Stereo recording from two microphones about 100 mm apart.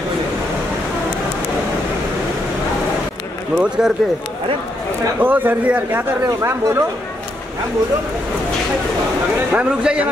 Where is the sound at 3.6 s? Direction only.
10° right (ahead or behind).